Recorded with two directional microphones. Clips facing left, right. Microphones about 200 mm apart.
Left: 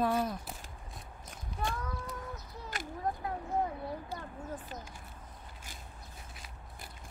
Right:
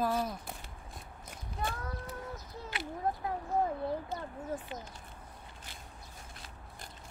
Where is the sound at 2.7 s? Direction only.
45° left (ahead or behind).